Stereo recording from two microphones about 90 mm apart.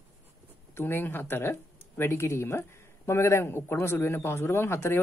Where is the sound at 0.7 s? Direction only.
25° left (ahead or behind).